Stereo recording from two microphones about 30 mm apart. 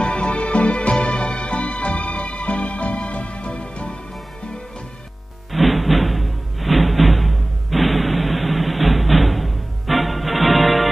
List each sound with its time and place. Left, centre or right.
0.0 s music: left
5.5 s music: centre